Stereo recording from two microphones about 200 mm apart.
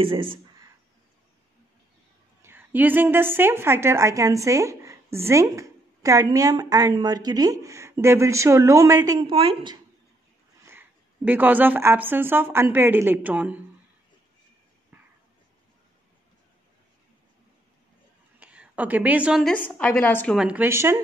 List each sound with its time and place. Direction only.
0.0 s speech: 25° right (ahead or behind)
2.4 s a woman's voice: 10° right (ahead or behind); by 9.8 s 25° right (ahead or behind)
10.6 s speech: 10° right (ahead or behind)
18.4 s a woman's voice: 5° right (ahead or behind)
19.5 s speech: 5° left (ahead or behind)
20.3 s a woman's voice: 5° right (ahead or behind)